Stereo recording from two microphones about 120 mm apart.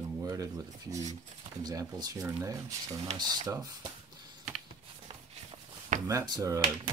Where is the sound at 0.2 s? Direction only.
30° right (ahead or behind).